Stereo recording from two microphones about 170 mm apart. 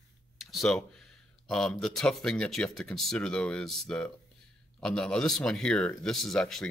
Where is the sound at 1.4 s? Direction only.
5° left (ahead or behind).